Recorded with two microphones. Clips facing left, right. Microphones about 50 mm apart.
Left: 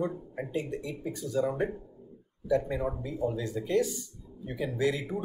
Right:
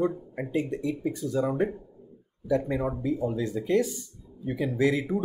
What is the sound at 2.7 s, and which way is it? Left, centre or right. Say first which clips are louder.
Speech: right 5 dB; right.